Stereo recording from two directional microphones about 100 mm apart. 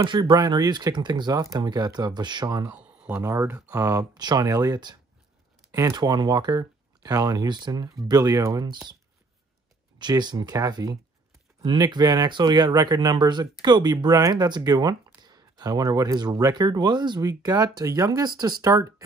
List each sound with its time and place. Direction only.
0.0 s speech: 45° right (ahead or behind)
2.6 s a sound: 15° right (ahead or behind)
3.2 s speech: 30° right (ahead or behind)
5.9 s speech: 45° right (ahead or behind)
8.6 s speech: 50° right (ahead or behind)
9.9 s speech: 45° right (ahead or behind)